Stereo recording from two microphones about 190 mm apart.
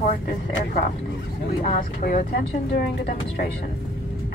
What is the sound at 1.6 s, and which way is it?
Speech, 40° left (ahead or behind).